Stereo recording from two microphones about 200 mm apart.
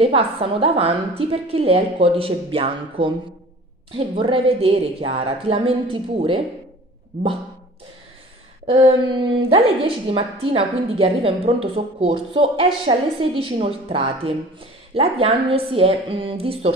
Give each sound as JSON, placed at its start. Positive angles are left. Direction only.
{"t": 0.0, "sound": "a woman's voice", "side_deg": -30}
{"t": 8.6, "sound": "a woman's voice", "side_deg": -25}